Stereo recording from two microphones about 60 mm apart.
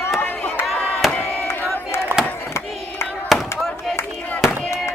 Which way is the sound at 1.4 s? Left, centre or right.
Left.